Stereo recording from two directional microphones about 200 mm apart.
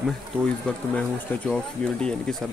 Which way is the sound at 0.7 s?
5° left (ahead or behind).